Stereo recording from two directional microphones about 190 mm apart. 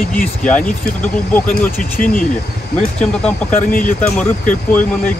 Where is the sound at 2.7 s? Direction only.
5° left (ahead or behind).